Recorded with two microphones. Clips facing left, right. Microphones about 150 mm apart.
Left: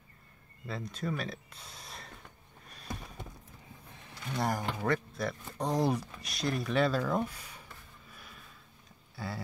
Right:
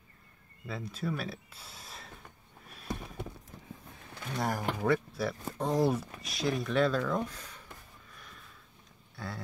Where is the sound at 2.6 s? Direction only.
5° right (ahead or behind).